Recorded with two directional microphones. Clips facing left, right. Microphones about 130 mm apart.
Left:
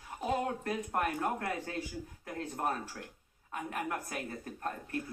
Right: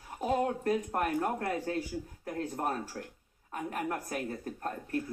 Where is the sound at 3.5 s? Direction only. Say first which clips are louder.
Right 2 dB; 40° right (ahead or behind).